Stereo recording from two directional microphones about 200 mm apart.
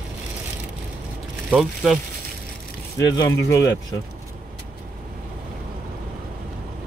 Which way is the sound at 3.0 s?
15° left (ahead or behind).